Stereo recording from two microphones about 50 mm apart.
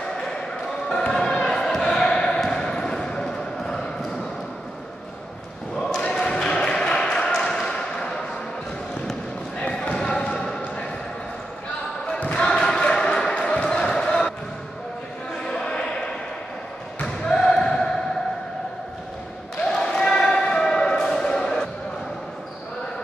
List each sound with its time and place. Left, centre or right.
0.0 s basketball bounce: centre
5.8 s basketball bounce: centre
7.6 s a sound: centre
9.6 s basketball bounce: centre
12.4 s a sound: centre
13.4 s basketball bounce: centre
15.4 s a sound: centre
17.0 s basketball bounce: centre
19.6 s basketball bounce: centre